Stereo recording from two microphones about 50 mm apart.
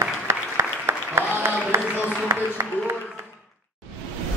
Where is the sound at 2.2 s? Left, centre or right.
Right.